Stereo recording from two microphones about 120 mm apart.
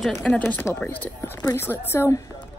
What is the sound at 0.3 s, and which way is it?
A woman's voice, 15° left (ahead or behind).